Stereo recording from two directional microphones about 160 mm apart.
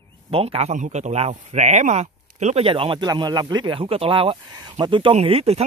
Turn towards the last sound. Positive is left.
turn(degrees=-40)  # may be behind; listen again after turning